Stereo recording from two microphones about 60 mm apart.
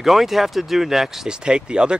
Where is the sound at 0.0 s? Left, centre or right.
Centre.